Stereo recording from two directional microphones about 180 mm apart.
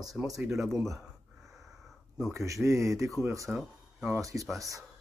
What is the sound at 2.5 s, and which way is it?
Speech, 15° right (ahead or behind).